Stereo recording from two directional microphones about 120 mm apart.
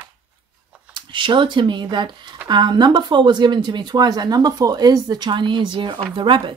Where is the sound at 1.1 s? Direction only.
40° right (ahead or behind).